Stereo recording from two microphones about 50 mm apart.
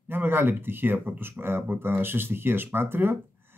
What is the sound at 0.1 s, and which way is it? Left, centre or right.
Speech, right.